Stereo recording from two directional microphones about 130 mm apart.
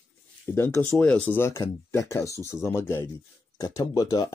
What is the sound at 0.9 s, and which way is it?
Speech, 10° left (ahead or behind).